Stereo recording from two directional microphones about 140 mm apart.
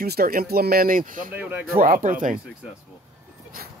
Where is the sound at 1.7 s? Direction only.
90° right.